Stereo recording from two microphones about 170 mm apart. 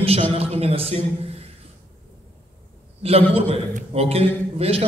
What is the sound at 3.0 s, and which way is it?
A man's voice, 35° right (ahead or behind).